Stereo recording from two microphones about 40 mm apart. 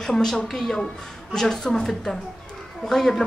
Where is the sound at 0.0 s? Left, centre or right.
Centre.